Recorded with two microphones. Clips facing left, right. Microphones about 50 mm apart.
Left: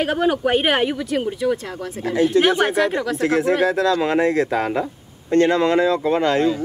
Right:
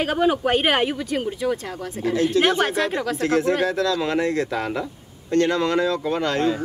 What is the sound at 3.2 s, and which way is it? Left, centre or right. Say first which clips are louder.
Speech: left 2 dB; left.